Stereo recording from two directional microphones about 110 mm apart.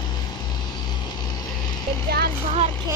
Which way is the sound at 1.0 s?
40° left (ahead or behind).